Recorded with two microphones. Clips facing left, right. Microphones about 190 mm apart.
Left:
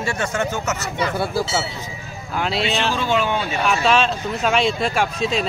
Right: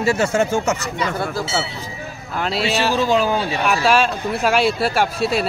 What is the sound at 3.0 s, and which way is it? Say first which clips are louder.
Speech: right 3 dB; 35° right (ahead or behind).